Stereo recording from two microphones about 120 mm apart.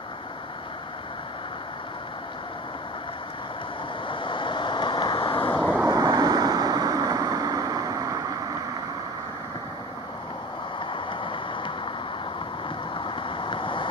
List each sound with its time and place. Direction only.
4.1 s vehicle: 45° left (ahead or behind)
5.9 s vehicle: 30° right (ahead or behind)
10.9 s a sound: 45° left (ahead or behind)
12.9 s vehicle: 45° left (ahead or behind)